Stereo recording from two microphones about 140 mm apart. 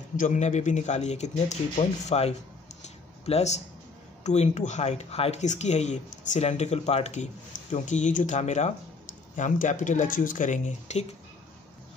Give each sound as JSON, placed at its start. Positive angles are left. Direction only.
{"t": 0.2, "sound": "speech", "side_deg": 55}
{"t": 2.8, "sound": "a sound", "side_deg": 50}
{"t": 4.2, "sound": "speech", "side_deg": 55}
{"t": 9.4, "sound": "speech", "side_deg": 65}